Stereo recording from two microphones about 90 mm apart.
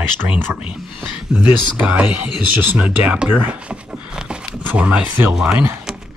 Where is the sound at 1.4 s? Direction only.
15° right (ahead or behind).